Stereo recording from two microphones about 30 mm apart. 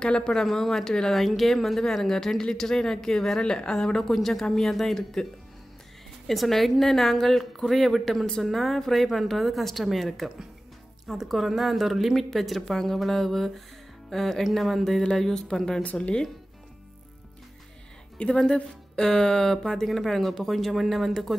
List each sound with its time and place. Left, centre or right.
0.2 s a woman's voice: left
4.0 s a woman's voice: centre
6.2 s a woman's voice: centre
15.5 s a woman's voice: centre
15.8 s speech: left
18.1 s a sound: left
18.4 s a woman's voice: centre
19.9 s speech: centre